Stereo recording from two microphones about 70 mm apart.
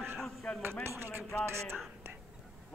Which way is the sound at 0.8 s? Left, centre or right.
Right.